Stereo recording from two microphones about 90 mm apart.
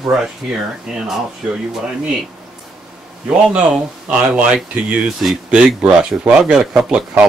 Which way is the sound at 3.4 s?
10° right (ahead or behind).